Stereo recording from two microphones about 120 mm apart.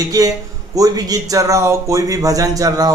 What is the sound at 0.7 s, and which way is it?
A man's voice, 30° right (ahead or behind).